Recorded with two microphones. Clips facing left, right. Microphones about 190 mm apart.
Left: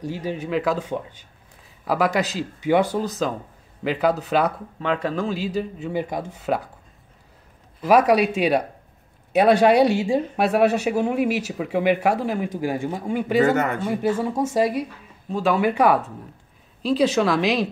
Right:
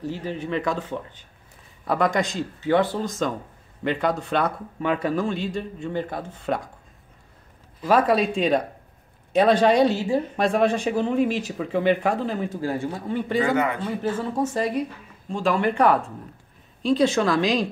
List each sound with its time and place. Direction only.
0.0 s a man's voice: 10° left (ahead or behind)
4.7 s a man's voice: 10° right (ahead or behind)
7.8 s speech: 10° left (ahead or behind)
13.4 s speech: 45° left (ahead or behind)
13.8 s a man's voice: 10° left (ahead or behind)